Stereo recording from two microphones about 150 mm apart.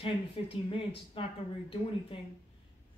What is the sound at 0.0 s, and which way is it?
Speech, 35° left (ahead or behind).